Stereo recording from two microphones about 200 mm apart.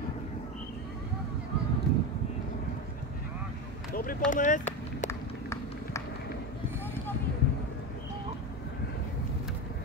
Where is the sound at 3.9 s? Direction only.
45° left (ahead or behind).